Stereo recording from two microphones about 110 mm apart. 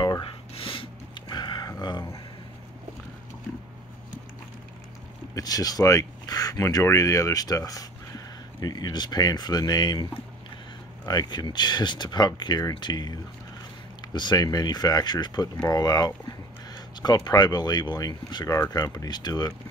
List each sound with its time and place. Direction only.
0.6 s a sound: 55° left (ahead or behind)
5.3 s speech: 35° left (ahead or behind)
11.1 s speech: 40° left (ahead or behind)